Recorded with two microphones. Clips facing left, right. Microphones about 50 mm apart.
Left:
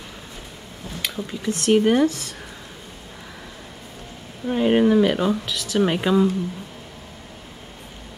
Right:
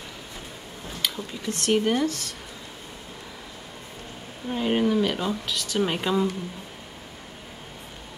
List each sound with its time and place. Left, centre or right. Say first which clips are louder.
1.1 s speech: left 5 dB; centre
1.9 s speech: left 6 dB; centre
4.5 s speech: left 6 dB; left
5.5 s speech: left 5 dB; centre